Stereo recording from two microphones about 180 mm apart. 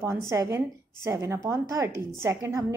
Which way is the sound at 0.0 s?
15° right (ahead or behind).